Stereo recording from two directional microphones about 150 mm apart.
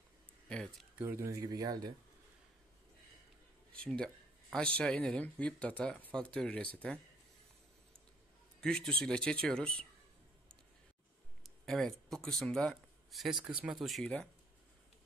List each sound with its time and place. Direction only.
0.5 s speech: 5° left (ahead or behind)
0.9 s speech: 15° right (ahead or behind)
3.7 s speech: 5° left (ahead or behind)
8.5 s a man's voice: 5° left (ahead or behind)
11.4 s speech: centre (ahead or behind)